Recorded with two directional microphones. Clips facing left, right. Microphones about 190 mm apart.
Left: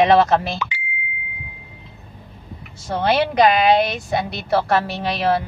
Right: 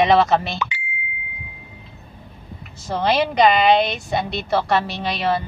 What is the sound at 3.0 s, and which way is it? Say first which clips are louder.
A woman's voice: left 1 dB; 5° left (ahead or behind).